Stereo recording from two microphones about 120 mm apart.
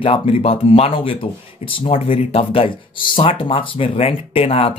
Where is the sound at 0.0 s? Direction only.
55° left (ahead or behind).